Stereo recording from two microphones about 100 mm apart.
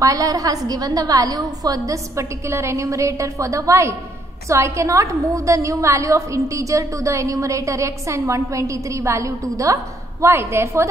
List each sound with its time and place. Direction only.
0.0 s a woman's voice: 35° right (ahead or behind)